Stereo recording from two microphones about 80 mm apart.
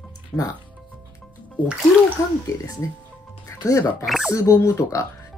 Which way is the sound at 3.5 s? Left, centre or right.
Left.